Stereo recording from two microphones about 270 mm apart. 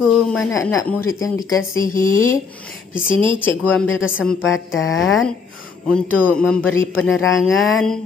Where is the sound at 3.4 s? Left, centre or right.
Centre.